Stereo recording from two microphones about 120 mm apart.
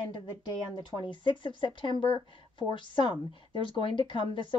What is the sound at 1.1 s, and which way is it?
Speech, 40° left (ahead or behind).